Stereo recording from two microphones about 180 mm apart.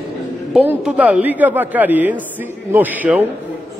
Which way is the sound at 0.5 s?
5° right (ahead or behind).